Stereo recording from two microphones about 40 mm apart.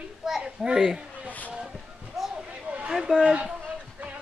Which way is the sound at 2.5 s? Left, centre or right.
Right.